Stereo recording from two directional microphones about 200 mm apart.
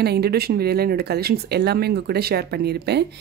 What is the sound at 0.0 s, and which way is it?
A woman's voice, 55° right (ahead or behind).